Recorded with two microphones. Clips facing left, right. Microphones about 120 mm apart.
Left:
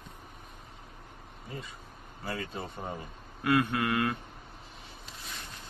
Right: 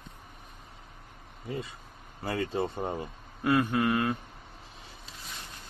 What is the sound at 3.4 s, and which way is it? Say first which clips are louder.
Speech: right 2 dB; 25° right (ahead or behind).